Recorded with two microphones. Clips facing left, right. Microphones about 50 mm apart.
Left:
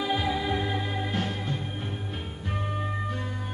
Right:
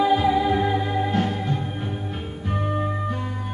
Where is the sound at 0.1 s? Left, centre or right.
Centre.